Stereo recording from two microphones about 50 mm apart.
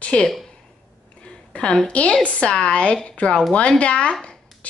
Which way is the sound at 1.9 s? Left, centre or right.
Left.